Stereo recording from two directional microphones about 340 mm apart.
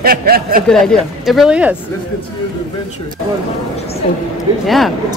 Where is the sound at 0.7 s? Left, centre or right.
Centre.